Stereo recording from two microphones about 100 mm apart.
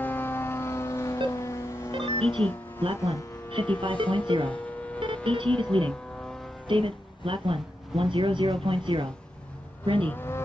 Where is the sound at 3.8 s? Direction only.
55° right (ahead or behind).